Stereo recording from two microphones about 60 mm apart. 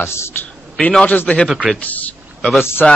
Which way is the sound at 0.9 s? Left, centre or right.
Centre.